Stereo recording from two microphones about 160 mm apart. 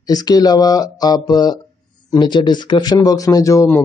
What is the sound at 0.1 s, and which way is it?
Speech, 25° left (ahead or behind).